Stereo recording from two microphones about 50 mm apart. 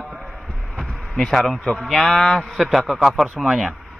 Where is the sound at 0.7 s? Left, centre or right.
Centre.